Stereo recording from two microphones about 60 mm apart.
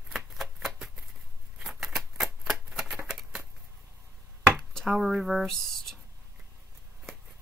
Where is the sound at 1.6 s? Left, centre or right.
Centre.